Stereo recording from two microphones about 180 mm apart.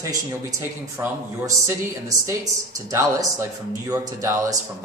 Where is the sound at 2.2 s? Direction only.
15° right (ahead or behind).